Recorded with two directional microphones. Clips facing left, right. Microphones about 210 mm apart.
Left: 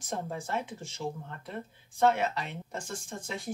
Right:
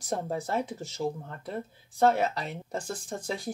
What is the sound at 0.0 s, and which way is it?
Speech, 35° right (ahead or behind).